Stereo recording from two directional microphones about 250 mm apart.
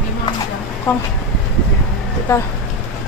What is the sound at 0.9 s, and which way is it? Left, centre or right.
Speech, centre.